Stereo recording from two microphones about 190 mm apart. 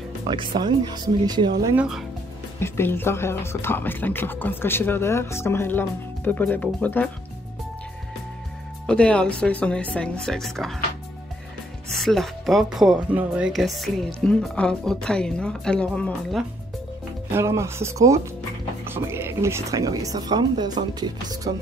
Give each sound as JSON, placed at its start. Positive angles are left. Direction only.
{"t": 0.3, "sound": "speech", "side_deg": -25}
{"t": 1.8, "sound": "speech", "side_deg": 0}
{"t": 2.6, "sound": "speech", "side_deg": 10}
{"t": 8.8, "sound": "speech", "side_deg": 5}
{"t": 11.9, "sound": "speech", "side_deg": 0}
{"t": 17.3, "sound": "speech", "side_deg": -15}